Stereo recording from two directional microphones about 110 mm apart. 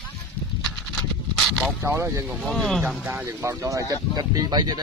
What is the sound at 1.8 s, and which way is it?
Speech, 25° right (ahead or behind).